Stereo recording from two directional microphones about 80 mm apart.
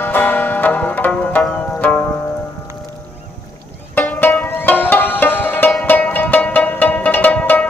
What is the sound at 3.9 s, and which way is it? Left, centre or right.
Music, left.